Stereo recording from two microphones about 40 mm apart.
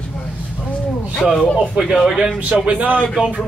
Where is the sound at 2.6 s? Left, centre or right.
Right.